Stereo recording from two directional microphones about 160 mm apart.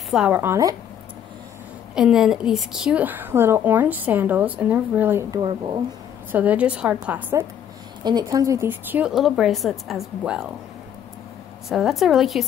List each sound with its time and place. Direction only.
0.1 s a woman's voice: 10° right (ahead or behind)
2.0 s a woman's voice: 5° right (ahead or behind)
5.3 s speech: 30° right (ahead or behind)
6.3 s a woman's voice: 10° right (ahead or behind)
8.0 s a woman's voice: 25° right (ahead or behind); by 10.5 s 5° right (ahead or behind)
11.7 s a woman's voice: centre (ahead or behind)